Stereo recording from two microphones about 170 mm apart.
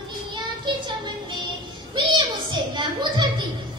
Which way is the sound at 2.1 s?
25° right (ahead or behind).